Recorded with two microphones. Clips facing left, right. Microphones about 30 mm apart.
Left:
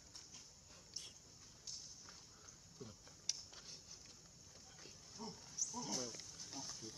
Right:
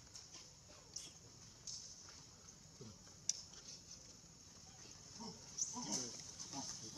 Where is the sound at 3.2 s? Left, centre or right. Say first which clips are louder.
Even; left.